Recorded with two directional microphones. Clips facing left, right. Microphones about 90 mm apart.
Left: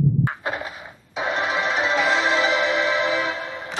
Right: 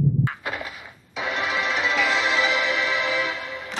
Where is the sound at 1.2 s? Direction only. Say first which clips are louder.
Left 3 dB; 30° left (ahead or behind).